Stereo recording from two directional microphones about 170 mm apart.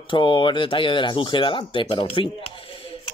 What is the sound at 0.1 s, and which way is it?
Speech, 30° left (ahead or behind).